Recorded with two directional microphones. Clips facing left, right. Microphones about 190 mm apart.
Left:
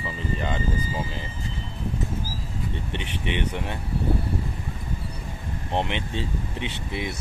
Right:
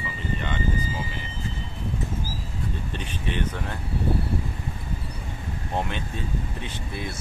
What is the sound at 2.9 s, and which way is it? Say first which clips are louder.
Speech: left 2 dB; 70° left (ahead or behind).